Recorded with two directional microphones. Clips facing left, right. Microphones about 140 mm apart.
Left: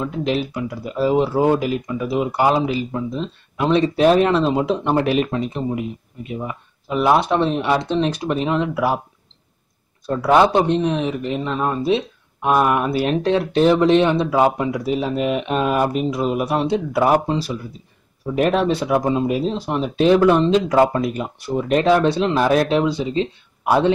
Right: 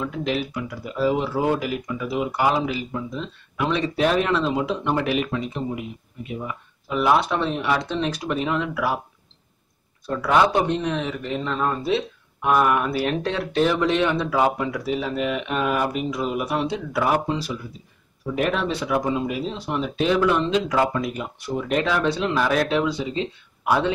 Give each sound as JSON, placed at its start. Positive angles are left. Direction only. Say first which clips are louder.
{"t": 0.0, "sound": "speech", "louder": "left 4 dB", "side_deg": 25}
{"t": 6.4, "sound": "speech", "louder": "left 3 dB", "side_deg": 25}
{"t": 10.0, "sound": "speech", "louder": "left 4 dB", "side_deg": 30}